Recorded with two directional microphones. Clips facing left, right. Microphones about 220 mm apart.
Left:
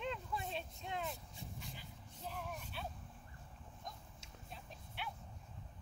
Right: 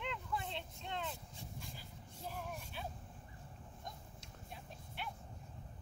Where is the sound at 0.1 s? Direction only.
20° left (ahead or behind).